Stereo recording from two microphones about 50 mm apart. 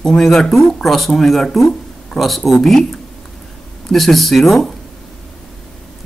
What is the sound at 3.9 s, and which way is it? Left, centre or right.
Speech, centre.